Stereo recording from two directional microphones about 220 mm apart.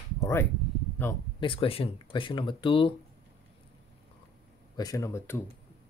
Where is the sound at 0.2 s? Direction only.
10° left (ahead or behind).